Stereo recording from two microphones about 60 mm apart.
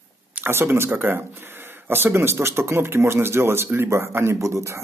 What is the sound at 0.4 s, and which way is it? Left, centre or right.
Speech, right.